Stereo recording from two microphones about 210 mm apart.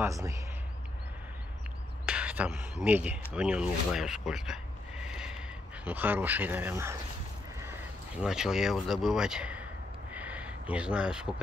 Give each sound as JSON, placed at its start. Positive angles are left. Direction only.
{"t": 0.0, "sound": "speech", "side_deg": -15}
{"t": 2.0, "sound": "speech", "side_deg": -5}
{"t": 8.2, "sound": "speech", "side_deg": -5}
{"t": 10.1, "sound": "a sound", "side_deg": -5}